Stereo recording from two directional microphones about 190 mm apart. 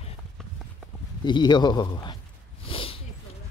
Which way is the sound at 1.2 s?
25° left (ahead or behind).